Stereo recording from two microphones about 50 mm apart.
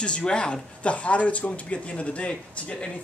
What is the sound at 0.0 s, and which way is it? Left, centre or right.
Speech, centre.